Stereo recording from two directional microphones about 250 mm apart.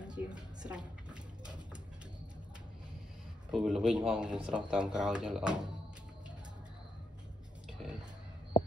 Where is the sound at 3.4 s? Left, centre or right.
Centre.